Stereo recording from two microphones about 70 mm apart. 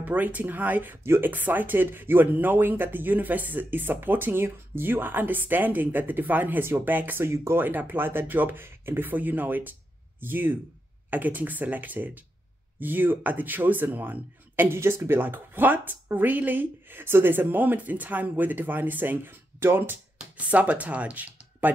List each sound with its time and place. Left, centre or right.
0.0 s speech: right
20.2 s speech: centre